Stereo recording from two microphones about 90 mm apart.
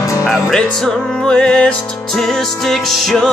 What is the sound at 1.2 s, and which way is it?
Music, 10° left (ahead or behind).